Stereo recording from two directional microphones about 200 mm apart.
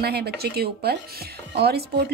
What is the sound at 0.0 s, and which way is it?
A woman's voice, 50° right (ahead or behind).